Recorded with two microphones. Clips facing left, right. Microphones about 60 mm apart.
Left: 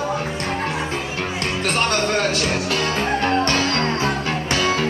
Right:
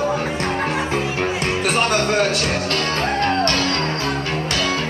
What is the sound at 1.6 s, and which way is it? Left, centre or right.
Music, centre.